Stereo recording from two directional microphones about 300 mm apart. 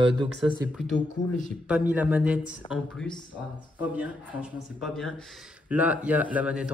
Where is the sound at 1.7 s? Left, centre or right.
Centre.